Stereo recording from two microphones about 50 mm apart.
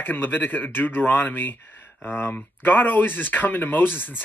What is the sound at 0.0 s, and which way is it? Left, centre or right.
Speech, left.